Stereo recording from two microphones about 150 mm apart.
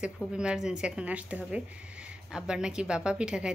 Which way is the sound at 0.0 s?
5° right (ahead or behind).